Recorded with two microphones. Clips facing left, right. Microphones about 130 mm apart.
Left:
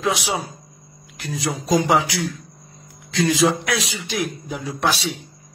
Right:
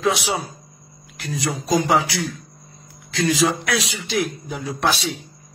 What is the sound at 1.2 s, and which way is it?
Speech, centre (ahead or behind).